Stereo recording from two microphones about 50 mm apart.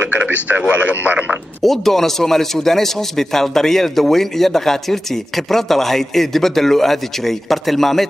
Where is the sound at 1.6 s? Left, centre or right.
Centre.